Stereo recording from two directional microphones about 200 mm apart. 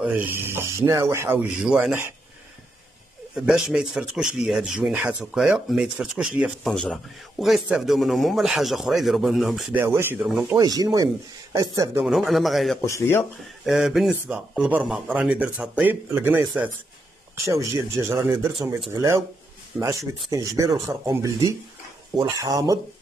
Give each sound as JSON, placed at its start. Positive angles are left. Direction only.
{"t": 0.0, "sound": "speech", "side_deg": -10}
{"t": 3.3, "sound": "speech", "side_deg": -5}
{"t": 12.0, "sound": "speech", "side_deg": 0}
{"t": 12.8, "sound": "speech", "side_deg": 15}
{"t": 13.7, "sound": "speech", "side_deg": 0}